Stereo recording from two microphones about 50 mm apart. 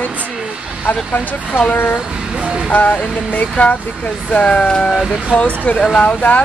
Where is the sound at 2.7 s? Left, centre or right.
Left.